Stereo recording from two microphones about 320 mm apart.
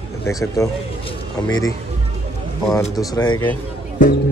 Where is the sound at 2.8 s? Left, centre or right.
Centre.